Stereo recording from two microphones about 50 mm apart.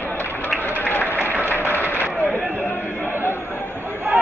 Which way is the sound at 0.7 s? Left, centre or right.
Left.